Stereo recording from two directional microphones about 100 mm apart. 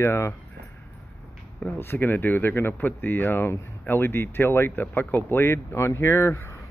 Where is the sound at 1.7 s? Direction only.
25° left (ahead or behind).